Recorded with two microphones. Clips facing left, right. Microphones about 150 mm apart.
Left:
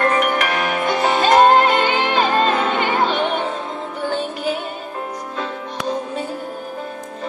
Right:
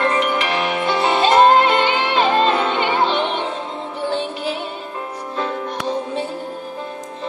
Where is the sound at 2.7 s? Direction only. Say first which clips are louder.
Even; 25° right (ahead or behind).